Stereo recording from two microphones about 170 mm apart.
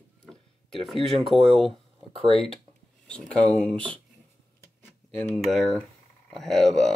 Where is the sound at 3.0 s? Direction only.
5° left (ahead or behind).